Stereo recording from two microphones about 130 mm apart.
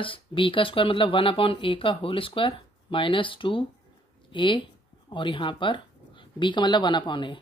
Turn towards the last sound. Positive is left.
turn(degrees=35)  # may be behind; listen again after turning